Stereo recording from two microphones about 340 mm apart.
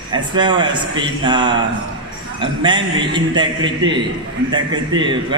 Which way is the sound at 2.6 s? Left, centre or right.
Centre.